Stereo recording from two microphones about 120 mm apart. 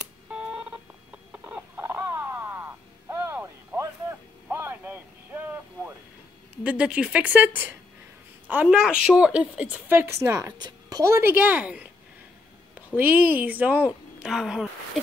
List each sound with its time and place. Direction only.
0.3 s telephone dialing: 10° right (ahead or behind)
1.3 s a sound: 15° right (ahead or behind)
6.6 s a woman's voice: 10° right (ahead or behind)